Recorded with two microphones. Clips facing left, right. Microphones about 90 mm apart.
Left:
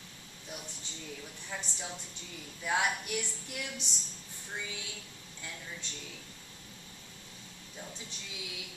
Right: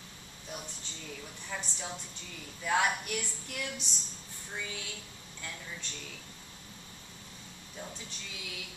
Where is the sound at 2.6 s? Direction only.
15° left (ahead or behind).